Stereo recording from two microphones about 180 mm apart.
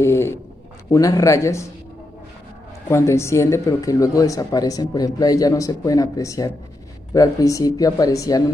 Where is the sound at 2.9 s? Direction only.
15° left (ahead or behind).